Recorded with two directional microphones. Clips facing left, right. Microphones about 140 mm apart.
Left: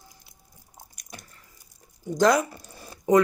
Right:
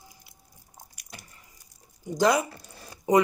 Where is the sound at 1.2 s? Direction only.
10° right (ahead or behind).